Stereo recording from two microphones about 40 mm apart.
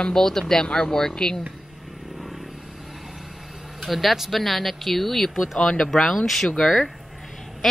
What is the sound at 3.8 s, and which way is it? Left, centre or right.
Speech, centre.